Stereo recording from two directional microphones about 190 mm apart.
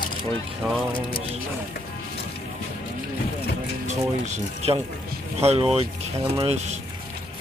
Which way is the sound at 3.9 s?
35° right (ahead or behind).